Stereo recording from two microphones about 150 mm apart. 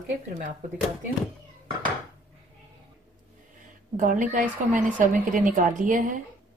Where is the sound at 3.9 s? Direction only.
60° right (ahead or behind).